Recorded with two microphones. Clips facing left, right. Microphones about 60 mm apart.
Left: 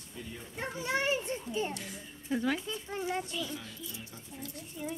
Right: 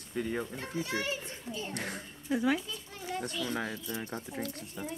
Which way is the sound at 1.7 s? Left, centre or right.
Right.